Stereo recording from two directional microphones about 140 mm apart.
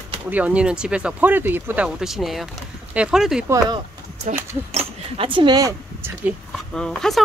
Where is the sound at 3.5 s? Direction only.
20° right (ahead or behind).